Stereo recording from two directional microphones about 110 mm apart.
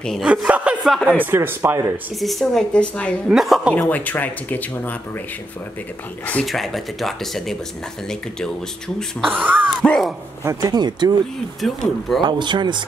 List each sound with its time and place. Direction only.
0.0 s speech: 5° left (ahead or behind)
0.3 s speech: 10° right (ahead or behind)
1.2 s speech: 20° right (ahead or behind)
2.1 s speech: centre (ahead or behind)
3.3 s speech: 5° right (ahead or behind)
3.7 s speech: 15° left (ahead or behind)
6.4 s speech: centre (ahead or behind)
9.4 s a sound: 15° right (ahead or behind)
9.8 s a sound: 5° left (ahead or behind)
10.4 s speech: 30° right (ahead or behind)
11.6 s speech: centre (ahead or behind)
12.2 s speech: 45° right (ahead or behind)